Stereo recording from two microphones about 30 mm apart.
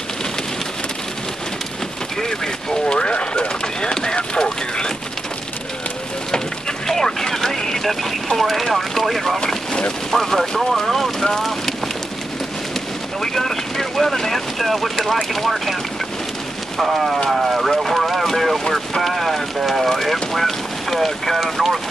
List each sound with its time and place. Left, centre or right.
2.2 s speech: left
3.0 s bird: left
3.9 s a sound: left
6.9 s a sound: centre
7.8 s speech: centre
13.2 s speech: centre
14.6 s speech: centre
16.7 s speech: centre